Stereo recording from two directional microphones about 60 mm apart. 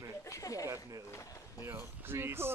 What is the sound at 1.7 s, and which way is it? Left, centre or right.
Speech, right.